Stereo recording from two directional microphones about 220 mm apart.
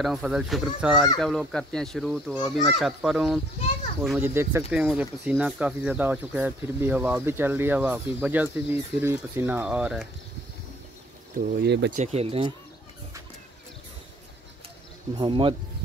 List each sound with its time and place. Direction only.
0.0 s a child's voice: centre (ahead or behind)
11.3 s speech: 50° right (ahead or behind)
11.9 s speech: 30° right (ahead or behind)
15.1 s speech: 20° right (ahead or behind)